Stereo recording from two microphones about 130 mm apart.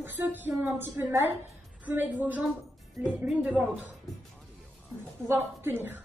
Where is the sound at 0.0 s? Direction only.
15° right (ahead or behind).